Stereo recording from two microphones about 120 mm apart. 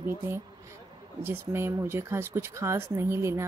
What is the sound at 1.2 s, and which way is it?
Speech, 20° right (ahead or behind).